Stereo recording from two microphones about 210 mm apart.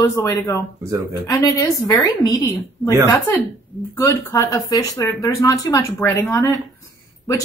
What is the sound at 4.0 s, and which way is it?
Speech, 15° left (ahead or behind).